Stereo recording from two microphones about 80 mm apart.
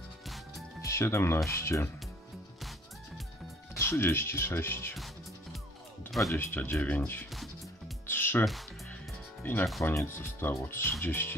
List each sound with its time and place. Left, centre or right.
0.8 s speech: left
3.7 s speech: left
4.9 s music: centre
6.3 s speech: left
8.1 s music: left
9.4 s speech: left